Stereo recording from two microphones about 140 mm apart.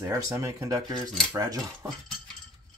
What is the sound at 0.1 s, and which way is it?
Speech, 20° right (ahead or behind).